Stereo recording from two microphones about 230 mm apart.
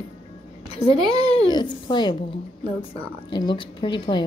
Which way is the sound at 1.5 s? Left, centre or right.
Centre.